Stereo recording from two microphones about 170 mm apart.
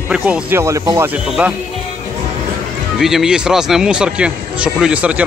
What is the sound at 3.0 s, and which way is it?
Speech, 5° right (ahead or behind).